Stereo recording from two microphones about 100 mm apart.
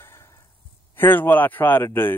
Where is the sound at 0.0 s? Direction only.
25° left (ahead or behind).